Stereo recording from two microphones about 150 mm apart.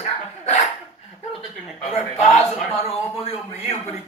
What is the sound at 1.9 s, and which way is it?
A man's voice, 50° left (ahead or behind).